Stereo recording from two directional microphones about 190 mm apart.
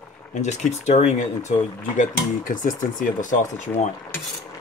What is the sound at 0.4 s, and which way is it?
Speech, 35° left (ahead or behind).